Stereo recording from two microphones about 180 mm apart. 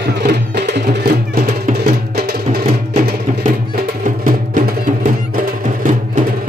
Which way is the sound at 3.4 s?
50° right (ahead or behind).